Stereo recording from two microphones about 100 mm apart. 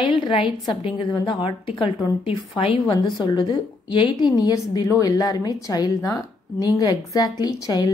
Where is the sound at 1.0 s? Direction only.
45° left (ahead or behind).